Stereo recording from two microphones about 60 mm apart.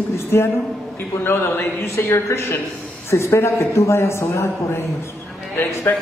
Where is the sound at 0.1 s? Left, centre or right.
Left.